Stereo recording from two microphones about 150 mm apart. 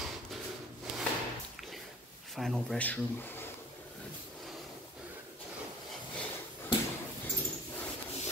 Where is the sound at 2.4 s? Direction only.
Centre (ahead or behind).